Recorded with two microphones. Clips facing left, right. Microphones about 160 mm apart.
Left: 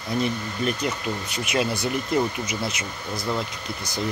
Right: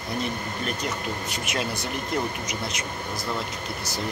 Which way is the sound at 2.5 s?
5° left (ahead or behind).